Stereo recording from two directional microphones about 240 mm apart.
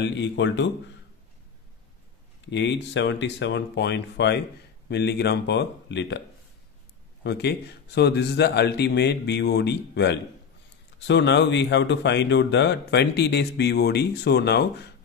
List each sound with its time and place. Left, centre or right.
0.0 s speech: left
2.5 s speech: left
7.2 s speech: left